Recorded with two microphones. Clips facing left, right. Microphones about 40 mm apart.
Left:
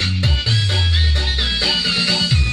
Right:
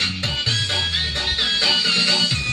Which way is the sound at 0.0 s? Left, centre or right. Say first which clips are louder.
Left 1 dB; centre.